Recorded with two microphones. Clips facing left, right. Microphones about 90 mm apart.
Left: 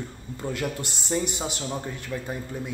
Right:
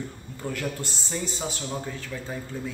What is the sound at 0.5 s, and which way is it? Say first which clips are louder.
Speech: left 1 dB; 20° left (ahead or behind).